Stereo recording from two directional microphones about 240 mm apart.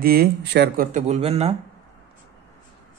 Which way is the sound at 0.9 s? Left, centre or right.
Right.